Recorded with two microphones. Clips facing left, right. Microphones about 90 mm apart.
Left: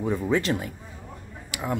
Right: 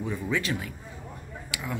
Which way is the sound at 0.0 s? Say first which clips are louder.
Left 5 dB; 35° left (ahead or behind).